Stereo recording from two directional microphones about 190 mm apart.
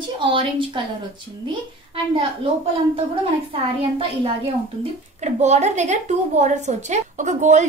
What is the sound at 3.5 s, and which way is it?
A woman's voice, 30° right (ahead or behind).